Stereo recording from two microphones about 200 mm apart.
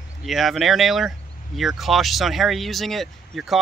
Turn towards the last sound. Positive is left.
turn(degrees=0)  # may be behind; listen again after turning